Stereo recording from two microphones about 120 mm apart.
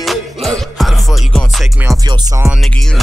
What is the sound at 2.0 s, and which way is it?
Music, 35° right (ahead or behind).